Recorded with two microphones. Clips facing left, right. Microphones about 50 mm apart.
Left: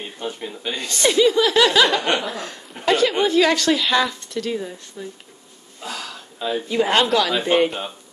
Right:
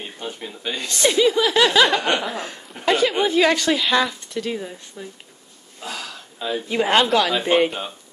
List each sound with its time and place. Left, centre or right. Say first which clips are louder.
0.2 s speech: left 3 dB; centre
2.2 s speech: right 1 dB; right
2.7 s speech: left 1 dB; centre
5.8 s a sound: left 1 dB; centre
6.7 s speech: right 1 dB; centre
7.4 s speech: even; centre